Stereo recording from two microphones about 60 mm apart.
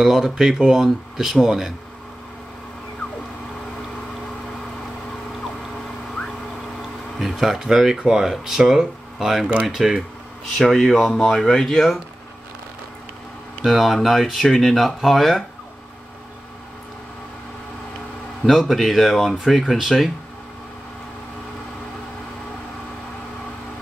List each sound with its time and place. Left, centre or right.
0.0 s speech: centre
7.2 s speech: centre
13.7 s speech: centre
18.4 s speech: centre